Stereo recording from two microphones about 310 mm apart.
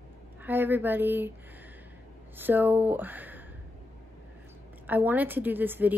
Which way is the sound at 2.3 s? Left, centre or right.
Centre.